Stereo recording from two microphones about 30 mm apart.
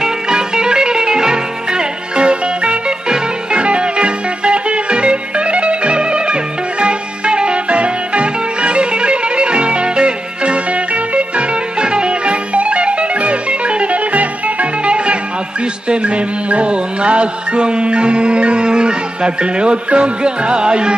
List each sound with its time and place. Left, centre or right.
0.0 s music: right